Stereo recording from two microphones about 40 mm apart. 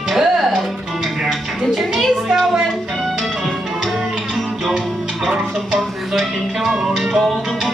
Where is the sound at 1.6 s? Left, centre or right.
Centre.